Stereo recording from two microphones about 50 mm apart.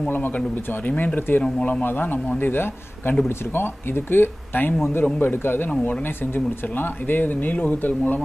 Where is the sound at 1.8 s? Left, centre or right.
Left.